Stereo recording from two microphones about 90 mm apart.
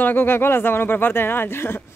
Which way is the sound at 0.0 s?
25° left (ahead or behind).